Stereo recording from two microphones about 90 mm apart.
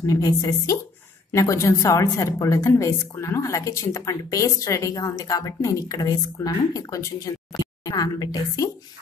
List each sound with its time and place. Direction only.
0.0 s a woman's voice: 40° left (ahead or behind)